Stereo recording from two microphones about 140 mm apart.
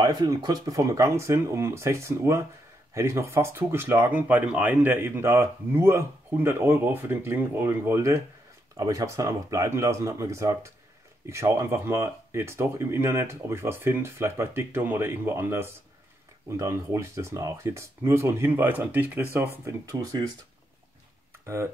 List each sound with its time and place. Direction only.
0.0 s speech: 30° right (ahead or behind); by 19.2 s 10° right (ahead or behind)
19.6 s speech: 25° right (ahead or behind)
21.3 s a sound: 20° right (ahead or behind)